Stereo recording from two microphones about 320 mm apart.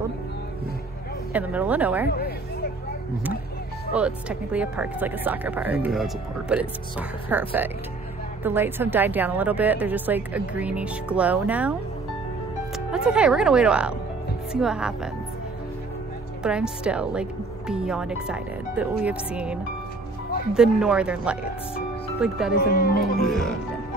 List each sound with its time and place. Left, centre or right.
1.3 s speech: centre
2.0 s speech: left
3.9 s speech: centre
12.7 s speech: centre
16.4 s speech: centre
22.6 s speech: left
23.1 s speech: centre